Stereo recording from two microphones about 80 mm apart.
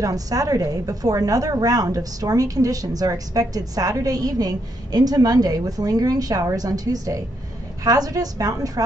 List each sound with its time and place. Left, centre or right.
0.0 s a woman's voice: right